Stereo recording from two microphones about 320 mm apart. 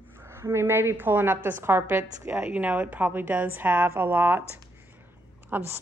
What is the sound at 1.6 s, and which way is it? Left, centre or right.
A woman's voice, centre.